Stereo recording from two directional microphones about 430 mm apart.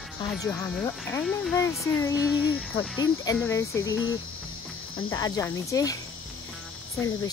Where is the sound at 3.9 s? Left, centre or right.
Left.